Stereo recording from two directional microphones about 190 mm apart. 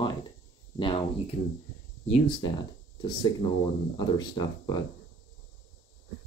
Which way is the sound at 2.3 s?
25° left (ahead or behind).